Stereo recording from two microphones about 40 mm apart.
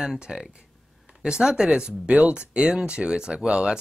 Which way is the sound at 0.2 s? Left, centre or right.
Right.